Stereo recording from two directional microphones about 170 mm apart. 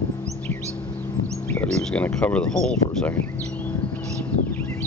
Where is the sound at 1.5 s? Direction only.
5° left (ahead or behind).